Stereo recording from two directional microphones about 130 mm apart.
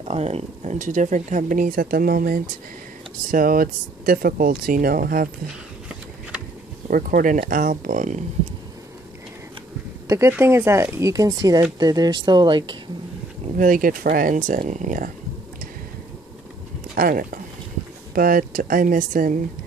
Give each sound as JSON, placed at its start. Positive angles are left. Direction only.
{"t": 0.1, "sound": "speech", "side_deg": -50}
{"t": 0.7, "sound": "speech", "side_deg": -75}
{"t": 6.9, "sound": "speech", "side_deg": -90}
{"t": 10.0, "sound": "speech", "side_deg": -25}
{"t": 13.6, "sound": "speech", "side_deg": -90}
{"t": 16.9, "sound": "speech", "side_deg": -90}